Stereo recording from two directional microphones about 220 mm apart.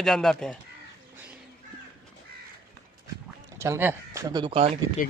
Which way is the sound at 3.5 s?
10° right (ahead or behind).